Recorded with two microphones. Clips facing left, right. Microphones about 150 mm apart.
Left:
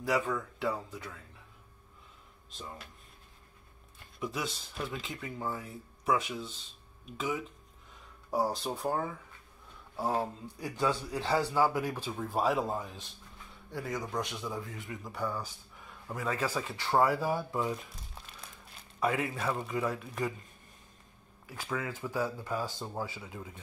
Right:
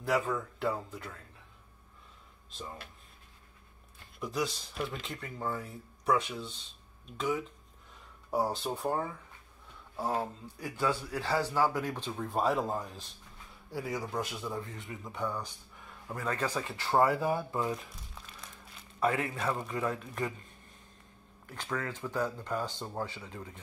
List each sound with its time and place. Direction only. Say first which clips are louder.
0.0 s speech: even; centre (ahead or behind)
2.5 s speech: right 1 dB; centre (ahead or behind)
4.2 s speech: right 2 dB; centre (ahead or behind)
18.9 s speech: right 1 dB; centre (ahead or behind)
21.5 s speech: even; 5° left (ahead or behind)